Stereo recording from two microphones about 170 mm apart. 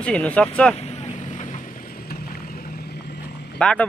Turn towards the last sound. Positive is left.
turn(degrees=5)  # may be behind; listen again after turning